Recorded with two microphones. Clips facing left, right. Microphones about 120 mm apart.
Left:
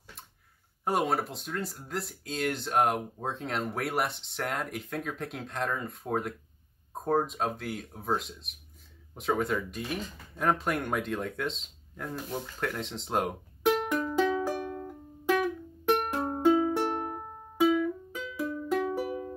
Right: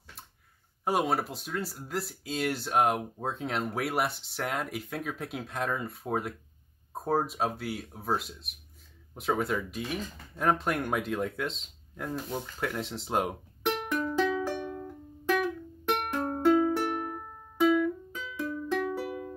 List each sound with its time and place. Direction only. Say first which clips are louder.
0.8 s speech: even; centre (ahead or behind)
14.4 s music: left 1 dB; 10° left (ahead or behind)
15.9 s music: left 2 dB; 15° left (ahead or behind)
17.6 s music: right 1 dB; 10° left (ahead or behind)